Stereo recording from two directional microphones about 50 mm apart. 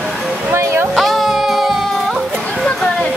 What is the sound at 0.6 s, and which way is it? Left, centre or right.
Music, right.